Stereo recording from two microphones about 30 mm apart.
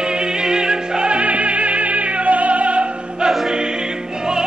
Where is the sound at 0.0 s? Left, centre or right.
Right.